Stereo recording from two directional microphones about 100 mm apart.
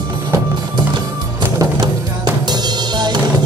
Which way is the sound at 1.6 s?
45° right (ahead or behind).